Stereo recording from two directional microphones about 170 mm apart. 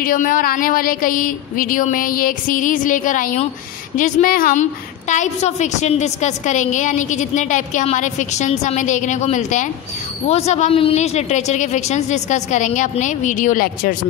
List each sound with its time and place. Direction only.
0.0 s a woman's voice: 55° left (ahead or behind)